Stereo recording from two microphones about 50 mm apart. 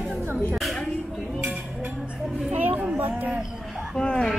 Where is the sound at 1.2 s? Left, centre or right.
Centre.